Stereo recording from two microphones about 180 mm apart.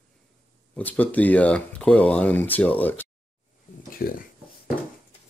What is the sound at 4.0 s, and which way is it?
Speech, 55° left (ahead or behind).